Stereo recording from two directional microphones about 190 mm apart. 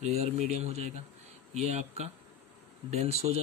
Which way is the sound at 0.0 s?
35° right (ahead or behind).